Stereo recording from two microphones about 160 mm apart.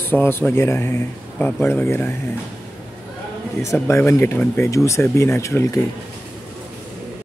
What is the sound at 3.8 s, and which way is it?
Speech, 15° left (ahead or behind).